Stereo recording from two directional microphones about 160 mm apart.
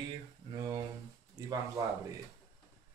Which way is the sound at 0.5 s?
25° right (ahead or behind).